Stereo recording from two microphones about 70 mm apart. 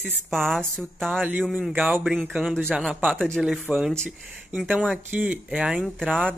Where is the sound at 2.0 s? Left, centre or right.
Centre.